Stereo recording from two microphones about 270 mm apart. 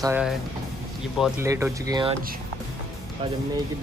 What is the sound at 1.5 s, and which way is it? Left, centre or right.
Speech, centre.